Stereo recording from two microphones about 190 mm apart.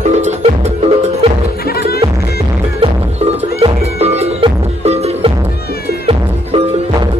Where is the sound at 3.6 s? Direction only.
30° right (ahead or behind).